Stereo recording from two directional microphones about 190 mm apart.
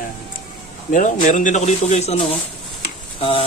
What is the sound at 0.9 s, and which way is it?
Speech, 40° left (ahead or behind).